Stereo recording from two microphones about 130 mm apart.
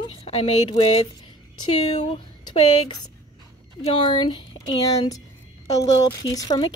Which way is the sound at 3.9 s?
40° left (ahead or behind).